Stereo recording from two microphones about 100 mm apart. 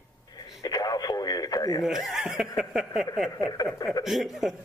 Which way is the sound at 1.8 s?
5° right (ahead or behind).